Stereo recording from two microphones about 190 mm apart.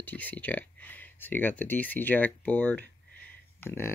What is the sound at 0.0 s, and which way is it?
Speech, 10° left (ahead or behind).